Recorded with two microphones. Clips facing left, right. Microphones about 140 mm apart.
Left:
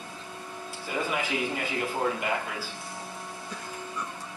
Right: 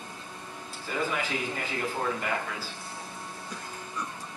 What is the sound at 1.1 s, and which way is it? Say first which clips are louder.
Speech: left 2 dB; 15° left (ahead or behind).